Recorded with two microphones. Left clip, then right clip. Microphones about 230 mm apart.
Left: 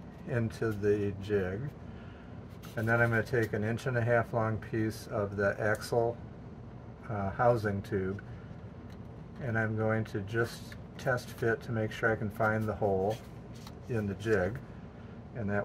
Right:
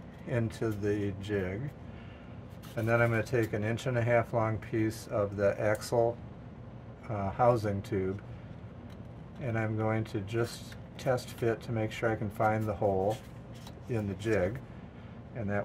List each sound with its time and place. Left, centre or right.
0.3 s speech: right
2.7 s speech: right
7.1 s speech: right
9.5 s speech: right
13.9 s a man's voice: right